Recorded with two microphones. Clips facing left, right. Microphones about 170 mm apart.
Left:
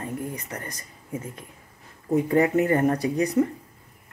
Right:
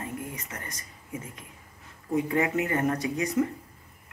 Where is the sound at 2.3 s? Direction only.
40° left (ahead or behind).